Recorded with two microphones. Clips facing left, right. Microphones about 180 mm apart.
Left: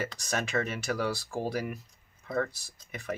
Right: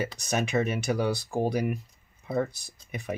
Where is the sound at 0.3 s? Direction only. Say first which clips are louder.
Right 5 dB; 20° right (ahead or behind).